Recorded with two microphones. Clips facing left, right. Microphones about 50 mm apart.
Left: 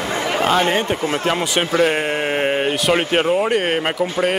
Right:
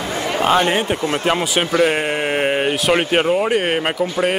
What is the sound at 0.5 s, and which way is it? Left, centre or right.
Speech, centre.